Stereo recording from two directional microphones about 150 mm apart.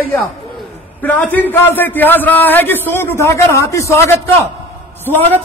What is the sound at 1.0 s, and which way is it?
A man's voice, 10° left (ahead or behind).